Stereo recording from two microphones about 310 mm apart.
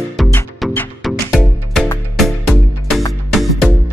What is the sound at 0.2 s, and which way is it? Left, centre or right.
Music, centre.